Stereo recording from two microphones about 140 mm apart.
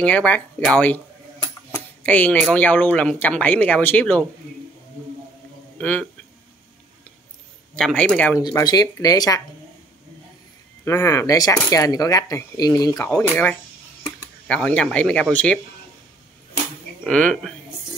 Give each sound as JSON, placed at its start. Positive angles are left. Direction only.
{"t": 0.0, "sound": "speech", "side_deg": 10}
{"t": 1.7, "sound": "a sound", "side_deg": 10}
{"t": 2.5, "sound": "speech", "side_deg": 10}
{"t": 5.8, "sound": "a man's voice", "side_deg": 10}
{"t": 7.7, "sound": "speech", "side_deg": 5}
{"t": 8.4, "sound": "cutlery", "side_deg": 30}
{"t": 10.9, "sound": "cutlery", "side_deg": 20}
{"t": 13.1, "sound": "speech", "side_deg": 10}
{"t": 17.0, "sound": "speech", "side_deg": 5}